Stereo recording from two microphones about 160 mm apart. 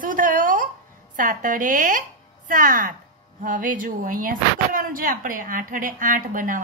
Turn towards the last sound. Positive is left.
turn(degrees=-55)  # may be behind; listen again after turning